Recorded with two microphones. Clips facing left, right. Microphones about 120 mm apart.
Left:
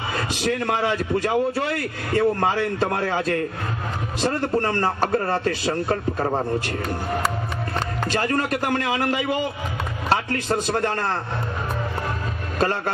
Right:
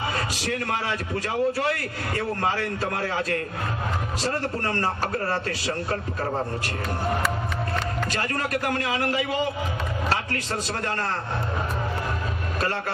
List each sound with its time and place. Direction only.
0.3 s a man's voice: 25° left (ahead or behind)
8.0 s speech: 30° left (ahead or behind)
10.0 s a man's voice: 30° left (ahead or behind)